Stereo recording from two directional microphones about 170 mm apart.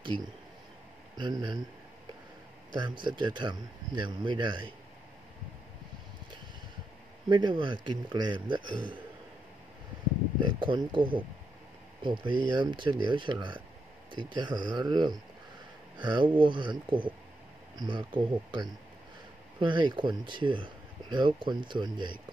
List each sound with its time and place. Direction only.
0.0 s speech: 30° right (ahead or behind)
2.7 s speech: 25° right (ahead or behind)
7.2 s speech: 25° right (ahead or behind)
10.4 s speech: 25° right (ahead or behind)